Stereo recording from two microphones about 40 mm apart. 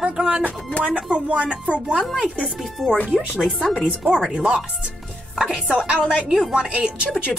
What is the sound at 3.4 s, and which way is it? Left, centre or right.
Speech, left.